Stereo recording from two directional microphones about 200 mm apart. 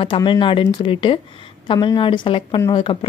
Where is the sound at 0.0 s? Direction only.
25° left (ahead or behind).